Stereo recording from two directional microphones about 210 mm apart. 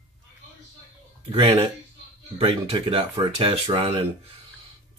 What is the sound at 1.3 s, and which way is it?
Speech, 20° right (ahead or behind).